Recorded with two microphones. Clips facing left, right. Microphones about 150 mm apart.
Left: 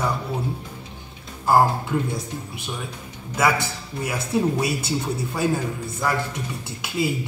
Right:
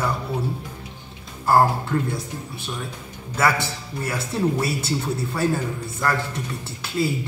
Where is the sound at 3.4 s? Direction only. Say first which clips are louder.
Even; 15° left (ahead or behind).